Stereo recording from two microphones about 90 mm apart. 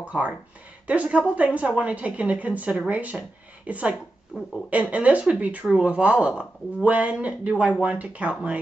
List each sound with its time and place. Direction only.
0.0 s speech: 15° right (ahead or behind)